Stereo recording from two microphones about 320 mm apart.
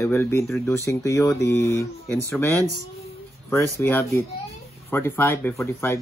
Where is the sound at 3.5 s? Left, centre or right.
Centre.